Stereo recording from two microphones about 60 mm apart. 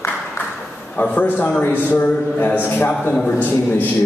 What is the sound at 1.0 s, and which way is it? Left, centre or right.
A man's voice, left.